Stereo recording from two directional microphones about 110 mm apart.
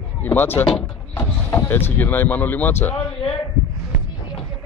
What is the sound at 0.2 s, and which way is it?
Speech, 15° left (ahead or behind).